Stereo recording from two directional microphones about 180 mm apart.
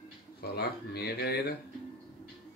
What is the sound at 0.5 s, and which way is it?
Speech, 60° left (ahead or behind).